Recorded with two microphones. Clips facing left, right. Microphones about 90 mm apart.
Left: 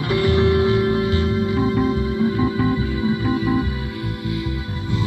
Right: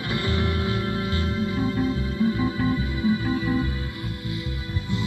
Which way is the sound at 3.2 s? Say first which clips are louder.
Left 5 dB; 65° left (ahead or behind).